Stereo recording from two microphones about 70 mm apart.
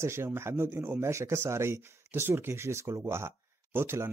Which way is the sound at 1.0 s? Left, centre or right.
Right.